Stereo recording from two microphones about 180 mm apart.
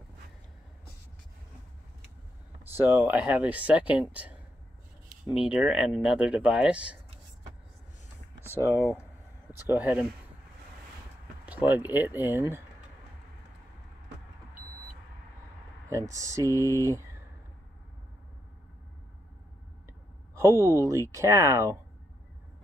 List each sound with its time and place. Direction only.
2.7 s speech: 10° right (ahead or behind)
8.5 s speech: 15° right (ahead or behind)
11.4 s a sound: 10° right (ahead or behind)
11.9 s speech: 10° right (ahead or behind)
15.9 s speech: 15° right (ahead or behind)
19.9 s a sound: 15° right (ahead or behind)
20.8 s speech: 15° right (ahead or behind)